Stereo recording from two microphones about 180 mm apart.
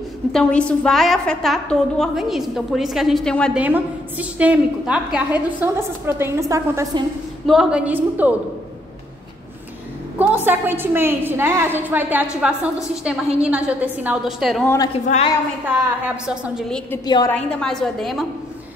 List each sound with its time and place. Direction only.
0.3 s a woman's voice: 5° left (ahead or behind)
3.5 s a woman's voice: 10° right (ahead or behind)
7.4 s a woman's voice: 5° right (ahead or behind)
10.1 s a woman's voice: 10° right (ahead or behind)
15.0 s a woman's voice: 35° left (ahead or behind)
16.3 s a woman's voice: 5° right (ahead or behind)
17.0 s a woman's voice: 20° left (ahead or behind)
17.3 s a woman's voice: 5° left (ahead or behind)